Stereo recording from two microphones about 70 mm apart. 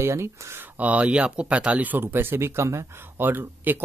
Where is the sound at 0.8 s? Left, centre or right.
Centre; by 2.8 s right.